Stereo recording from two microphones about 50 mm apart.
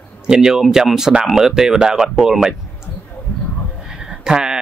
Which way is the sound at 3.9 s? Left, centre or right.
Centre.